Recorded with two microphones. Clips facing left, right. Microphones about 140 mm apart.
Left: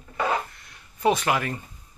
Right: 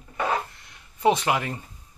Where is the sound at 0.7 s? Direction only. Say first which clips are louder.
Right 1 dB; 20° right (ahead or behind).